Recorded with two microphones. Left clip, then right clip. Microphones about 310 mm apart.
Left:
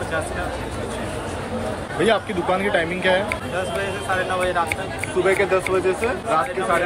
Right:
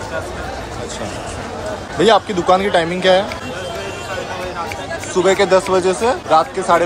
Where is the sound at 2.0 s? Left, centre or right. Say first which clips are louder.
Right 7 dB; centre.